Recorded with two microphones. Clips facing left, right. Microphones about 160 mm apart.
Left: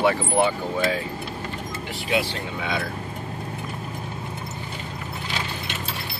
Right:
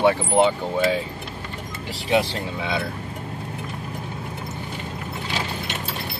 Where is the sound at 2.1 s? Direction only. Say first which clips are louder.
Right 4 dB; 25° right (ahead or behind).